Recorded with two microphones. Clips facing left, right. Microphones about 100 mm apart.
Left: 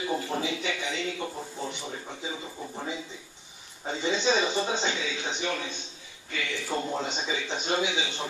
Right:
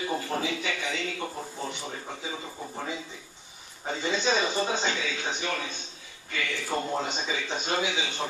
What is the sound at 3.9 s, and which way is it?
A man's voice, 20° left (ahead or behind).